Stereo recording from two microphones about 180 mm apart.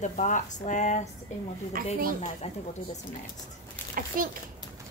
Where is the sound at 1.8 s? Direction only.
50° right (ahead or behind).